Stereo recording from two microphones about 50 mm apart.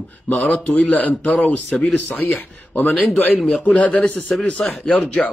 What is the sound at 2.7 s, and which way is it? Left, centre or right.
Speech, left.